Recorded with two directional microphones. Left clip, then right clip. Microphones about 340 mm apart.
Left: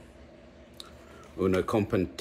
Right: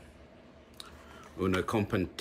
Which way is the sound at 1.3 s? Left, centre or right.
Centre.